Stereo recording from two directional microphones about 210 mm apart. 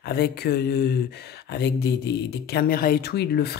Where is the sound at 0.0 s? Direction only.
50° left (ahead or behind).